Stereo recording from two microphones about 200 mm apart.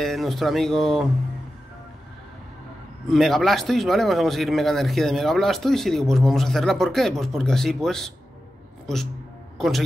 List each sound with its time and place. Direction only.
0.0 s speech: centre (ahead or behind)
3.1 s speech: centre (ahead or behind)
9.6 s speech: centre (ahead or behind)